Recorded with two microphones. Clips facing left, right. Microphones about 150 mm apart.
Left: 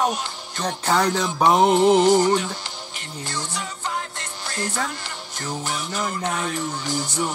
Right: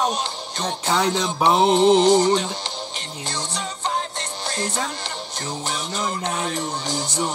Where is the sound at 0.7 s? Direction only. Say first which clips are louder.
Left 1 dB; 10° left (ahead or behind).